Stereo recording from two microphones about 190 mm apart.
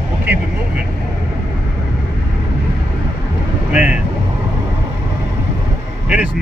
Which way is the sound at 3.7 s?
5° right (ahead or behind).